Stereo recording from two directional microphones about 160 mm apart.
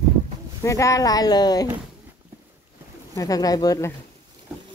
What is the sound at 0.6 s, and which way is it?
Speech, 20° left (ahead or behind).